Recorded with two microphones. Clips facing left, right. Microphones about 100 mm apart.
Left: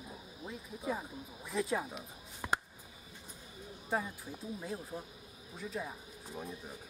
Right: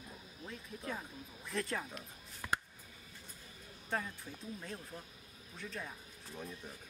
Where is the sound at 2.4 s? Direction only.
15° left (ahead or behind).